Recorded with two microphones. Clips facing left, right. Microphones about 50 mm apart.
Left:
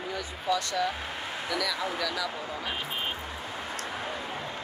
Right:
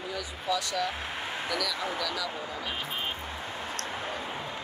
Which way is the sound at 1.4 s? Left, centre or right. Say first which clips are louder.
Left 2 dB; left.